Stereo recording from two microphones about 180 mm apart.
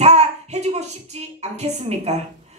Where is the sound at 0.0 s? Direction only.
35° right (ahead or behind).